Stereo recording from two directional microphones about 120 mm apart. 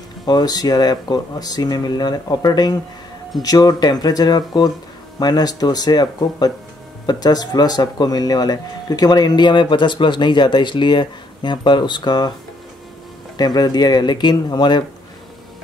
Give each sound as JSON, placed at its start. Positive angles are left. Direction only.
{"t": 0.2, "sound": "speech", "side_deg": 35}
{"t": 13.4, "sound": "speech", "side_deg": 35}